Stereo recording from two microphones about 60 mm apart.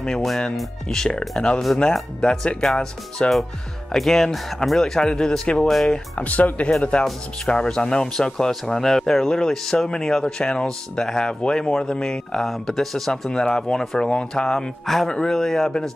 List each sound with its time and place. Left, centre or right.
0.0 s speech: centre
6.1 s speech: left; by 15.9 s centre